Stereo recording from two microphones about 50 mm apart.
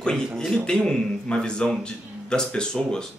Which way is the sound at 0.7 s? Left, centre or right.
Centre.